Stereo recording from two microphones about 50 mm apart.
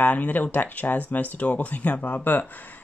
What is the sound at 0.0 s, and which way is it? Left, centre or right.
Speech, left.